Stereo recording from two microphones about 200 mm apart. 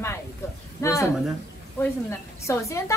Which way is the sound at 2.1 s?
15° left (ahead or behind).